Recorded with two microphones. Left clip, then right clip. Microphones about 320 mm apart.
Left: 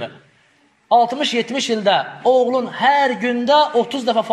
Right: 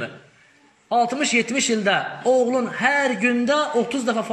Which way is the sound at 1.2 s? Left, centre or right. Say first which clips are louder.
Left 1 dB; left.